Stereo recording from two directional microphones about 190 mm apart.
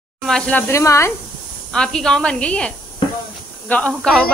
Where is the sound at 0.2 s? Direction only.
5° left (ahead or behind).